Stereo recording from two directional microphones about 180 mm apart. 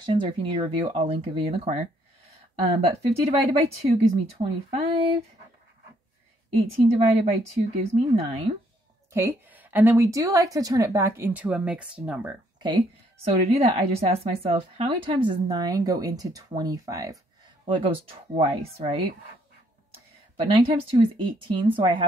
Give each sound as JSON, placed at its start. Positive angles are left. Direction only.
{"t": 0.0, "sound": "a woman's voice", "side_deg": -25}
{"t": 6.7, "sound": "speech", "side_deg": -35}
{"t": 9.1, "sound": "a woman's voice", "side_deg": -10}
{"t": 12.5, "sound": "a woman's voice", "side_deg": -25}
{"t": 20.3, "sound": "a woman's voice", "side_deg": -30}